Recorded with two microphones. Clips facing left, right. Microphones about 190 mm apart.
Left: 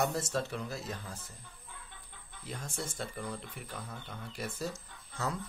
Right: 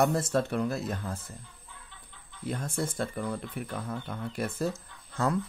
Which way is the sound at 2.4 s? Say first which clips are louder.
Right 8 dB; 55° right (ahead or behind).